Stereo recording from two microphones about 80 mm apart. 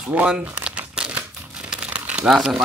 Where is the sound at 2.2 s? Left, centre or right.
Centre.